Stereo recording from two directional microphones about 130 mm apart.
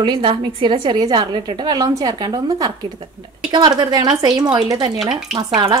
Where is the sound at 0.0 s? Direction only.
40° right (ahead or behind).